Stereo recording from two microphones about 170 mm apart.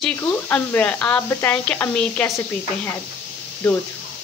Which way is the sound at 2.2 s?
15° left (ahead or behind).